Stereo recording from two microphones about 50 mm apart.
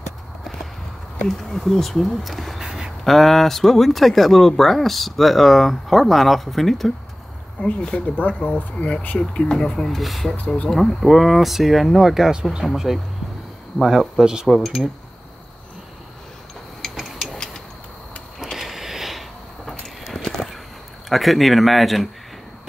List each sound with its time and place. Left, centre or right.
1.2 s speech: centre
2.6 s a sound: centre
3.0 s speech: centre
7.6 s speech: left
9.8 s speech: centre
10.3 s speech: left
10.9 s speech: centre
14.5 s speech: centre
16.9 s a sound: centre
18.5 s a sound: centre
19.7 s a sound: centre
21.1 s speech: centre